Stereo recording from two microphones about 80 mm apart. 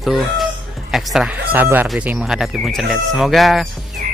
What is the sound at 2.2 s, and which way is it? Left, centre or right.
Speech, centre.